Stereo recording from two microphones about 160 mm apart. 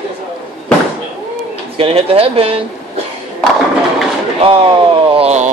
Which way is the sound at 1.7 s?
35° right (ahead or behind).